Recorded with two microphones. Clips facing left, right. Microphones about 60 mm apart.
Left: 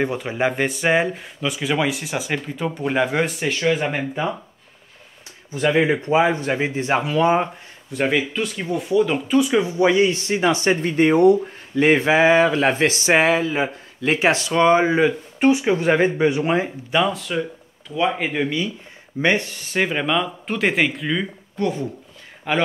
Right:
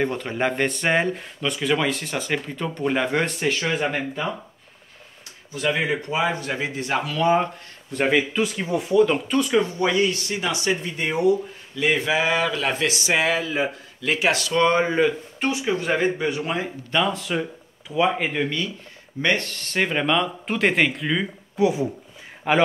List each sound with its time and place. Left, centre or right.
0.0 s speech: centre
4.1 s speech: left
5.5 s speech: left
8.3 s speech: centre; by 16.7 s left
16.9 s a man's voice: centre